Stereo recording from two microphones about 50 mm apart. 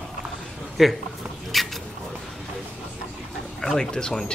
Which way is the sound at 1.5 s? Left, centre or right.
Centre.